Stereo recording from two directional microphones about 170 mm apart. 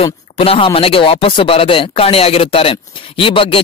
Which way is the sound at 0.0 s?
35° left (ahead or behind).